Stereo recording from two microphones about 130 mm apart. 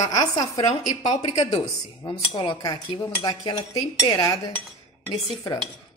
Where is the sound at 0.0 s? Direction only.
30° left (ahead or behind).